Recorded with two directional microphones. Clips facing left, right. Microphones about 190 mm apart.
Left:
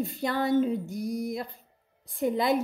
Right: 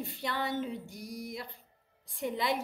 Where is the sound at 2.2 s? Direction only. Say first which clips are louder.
Left 7 dB; 45° left (ahead or behind).